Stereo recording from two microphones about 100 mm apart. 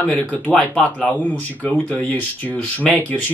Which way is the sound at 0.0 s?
15° left (ahead or behind).